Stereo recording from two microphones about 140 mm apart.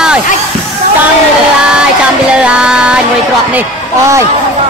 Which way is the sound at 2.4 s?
5° right (ahead or behind).